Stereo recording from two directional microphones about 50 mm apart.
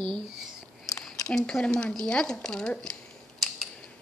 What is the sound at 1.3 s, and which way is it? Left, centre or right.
Speech, centre.